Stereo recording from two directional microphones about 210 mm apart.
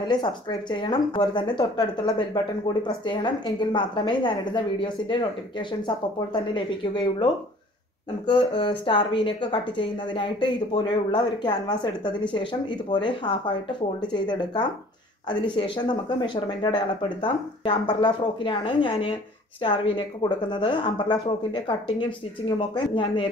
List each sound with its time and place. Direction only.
0.1 s a woman's voice: 20° left (ahead or behind)
8.3 s a woman's voice: 25° left (ahead or behind)